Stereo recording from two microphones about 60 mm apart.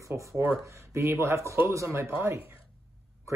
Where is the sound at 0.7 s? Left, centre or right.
Right.